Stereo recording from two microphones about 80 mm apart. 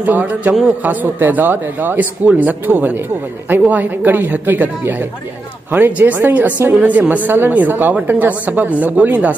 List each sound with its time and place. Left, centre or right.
0.0 s a woman's voice: right